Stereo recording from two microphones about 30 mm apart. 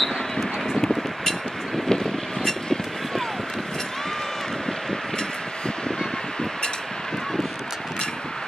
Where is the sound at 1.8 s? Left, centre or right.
Centre.